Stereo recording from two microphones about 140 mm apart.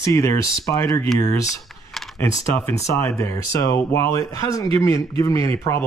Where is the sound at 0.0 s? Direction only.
20° left (ahead or behind).